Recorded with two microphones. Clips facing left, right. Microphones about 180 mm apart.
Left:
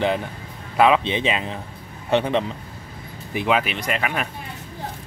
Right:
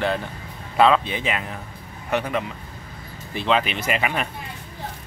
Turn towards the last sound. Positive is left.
turn(degrees=0)  # may be behind; listen again after turning